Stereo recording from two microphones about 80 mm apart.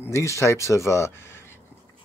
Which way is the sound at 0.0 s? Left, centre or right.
Left.